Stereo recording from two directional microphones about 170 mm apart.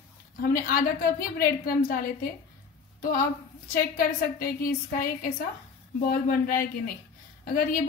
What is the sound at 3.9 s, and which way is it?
A woman's voice, 60° left (ahead or behind).